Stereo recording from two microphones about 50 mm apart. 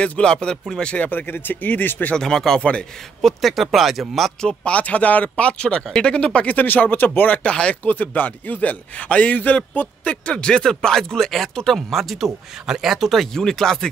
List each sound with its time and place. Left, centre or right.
0.0 s speech: left
0.3 s a man's voice: centre
0.9 s speech: left
1.2 s speech: left
2.1 s a man's voice: centre
3.2 s speech: centre
4.4 s speech: left
7.4 s a man's voice: left